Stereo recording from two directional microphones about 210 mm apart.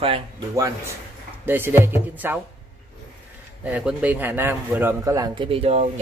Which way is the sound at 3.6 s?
5° right (ahead or behind).